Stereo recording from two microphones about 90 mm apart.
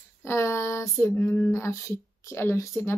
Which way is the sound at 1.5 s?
35° left (ahead or behind).